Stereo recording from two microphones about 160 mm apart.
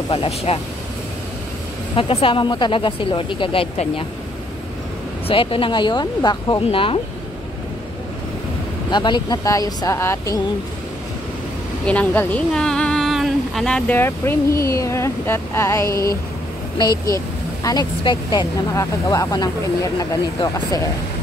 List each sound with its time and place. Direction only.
0.1 s speech: 35° left (ahead or behind)
2.0 s speech: 35° left (ahead or behind)
5.3 s speech: 35° left (ahead or behind)
8.9 s speech: 25° left (ahead or behind)
11.8 s speech: 10° left (ahead or behind)
17.6 s speech: 25° left (ahead or behind)